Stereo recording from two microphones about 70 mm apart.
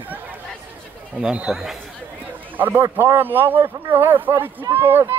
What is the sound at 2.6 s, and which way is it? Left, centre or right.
A man's voice, right.